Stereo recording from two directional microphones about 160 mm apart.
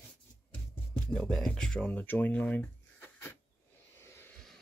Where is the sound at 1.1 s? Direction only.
5° left (ahead or behind).